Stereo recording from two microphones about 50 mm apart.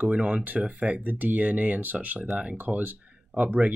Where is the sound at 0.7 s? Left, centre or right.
Right.